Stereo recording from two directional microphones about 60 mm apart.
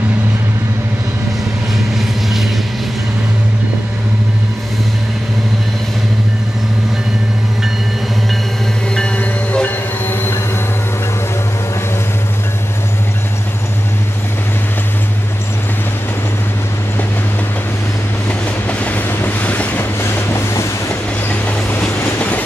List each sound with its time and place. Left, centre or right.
8.9 s train: centre
10.0 s vehicle: left
18.7 s train: left
19.0 s boat: left
21.8 s train: left